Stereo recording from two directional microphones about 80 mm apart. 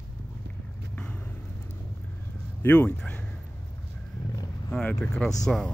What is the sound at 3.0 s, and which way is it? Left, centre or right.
Speech, centre.